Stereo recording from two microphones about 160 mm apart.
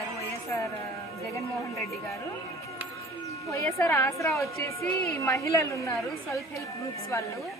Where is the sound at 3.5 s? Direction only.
15° left (ahead or behind).